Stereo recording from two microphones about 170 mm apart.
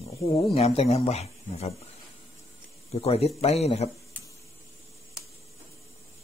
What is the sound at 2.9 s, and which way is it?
Speech, 35° left (ahead or behind).